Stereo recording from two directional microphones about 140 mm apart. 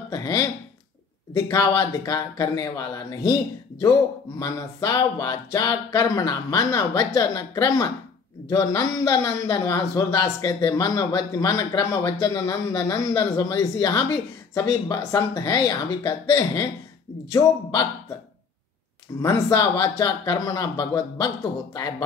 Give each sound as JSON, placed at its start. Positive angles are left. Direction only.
{"t": 0.1, "sound": "speech", "side_deg": 25}
{"t": 4.4, "sound": "speech", "side_deg": 25}
{"t": 19.2, "sound": "speech", "side_deg": 25}